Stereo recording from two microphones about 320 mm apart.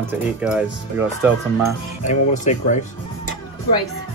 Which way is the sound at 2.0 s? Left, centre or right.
Left.